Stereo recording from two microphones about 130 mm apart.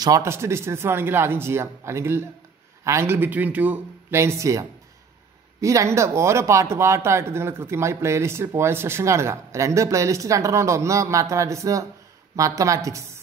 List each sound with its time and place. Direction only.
0.0 s speech: 25° right (ahead or behind)